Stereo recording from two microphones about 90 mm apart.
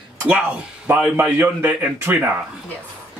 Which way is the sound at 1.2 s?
20° right (ahead or behind).